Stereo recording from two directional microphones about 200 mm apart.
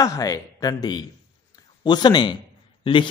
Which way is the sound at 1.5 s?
20° left (ahead or behind).